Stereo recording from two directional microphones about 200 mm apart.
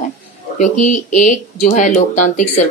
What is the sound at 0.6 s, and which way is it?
Speech, 40° left (ahead or behind).